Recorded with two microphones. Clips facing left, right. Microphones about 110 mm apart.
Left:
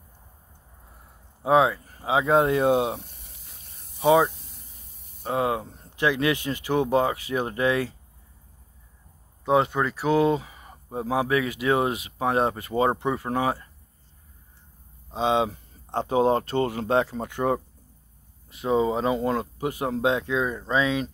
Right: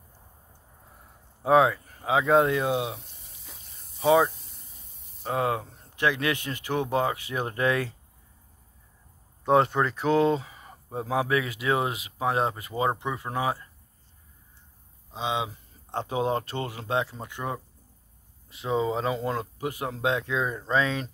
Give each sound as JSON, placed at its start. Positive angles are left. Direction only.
{"t": 1.4, "sound": "speech", "side_deg": 25}
{"t": 3.1, "sound": "a sound", "side_deg": 60}
{"t": 4.3, "sound": "a sound", "side_deg": 0}
{"t": 5.3, "sound": "speech", "side_deg": 25}
{"t": 9.4, "sound": "speech", "side_deg": 5}
{"t": 10.1, "sound": "speech", "side_deg": 15}
{"t": 11.1, "sound": "speech", "side_deg": 30}
{"t": 15.0, "sound": "speech", "side_deg": 40}
{"t": 18.6, "sound": "speech", "side_deg": 15}
{"t": 20.6, "sound": "speech", "side_deg": 10}